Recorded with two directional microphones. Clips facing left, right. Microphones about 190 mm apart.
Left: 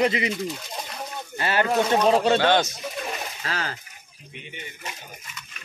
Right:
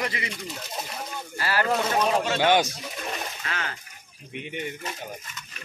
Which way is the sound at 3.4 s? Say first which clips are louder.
Left 5 dB; 35° left (ahead or behind).